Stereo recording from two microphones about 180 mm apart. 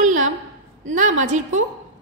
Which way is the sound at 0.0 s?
45° right (ahead or behind).